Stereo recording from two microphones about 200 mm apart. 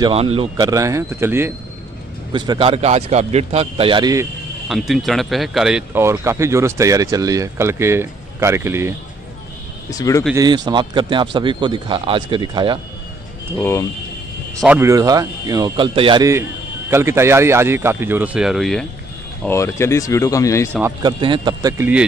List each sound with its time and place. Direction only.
0.0 s a man's voice: 30° right (ahead or behind)
4.6 s speech: centre (ahead or behind)
9.8 s speech: 15° left (ahead or behind)
10.3 s a man's voice: 20° right (ahead or behind)
13.6 s speech: 15° left (ahead or behind)
14.6 s a man's voice: 10° right (ahead or behind)
19.4 s speech: 15° left (ahead or behind)
21.0 s a man's voice: 25° right (ahead or behind)